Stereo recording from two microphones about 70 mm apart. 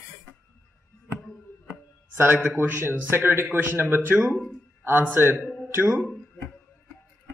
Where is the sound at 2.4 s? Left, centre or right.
Right.